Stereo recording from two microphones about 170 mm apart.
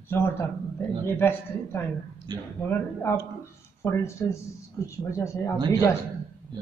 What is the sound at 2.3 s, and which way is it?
Speech, 25° right (ahead or behind).